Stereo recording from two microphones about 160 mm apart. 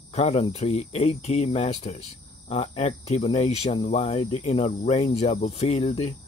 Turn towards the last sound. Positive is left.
turn(degrees=45)  # may be behind; listen again after turning